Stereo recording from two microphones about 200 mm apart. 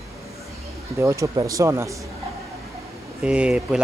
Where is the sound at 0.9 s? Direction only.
15° right (ahead or behind).